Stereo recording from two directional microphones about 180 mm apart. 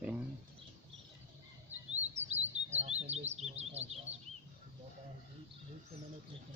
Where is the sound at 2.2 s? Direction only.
40° right (ahead or behind).